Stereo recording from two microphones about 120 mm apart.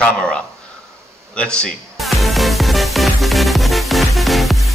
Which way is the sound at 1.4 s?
5° left (ahead or behind).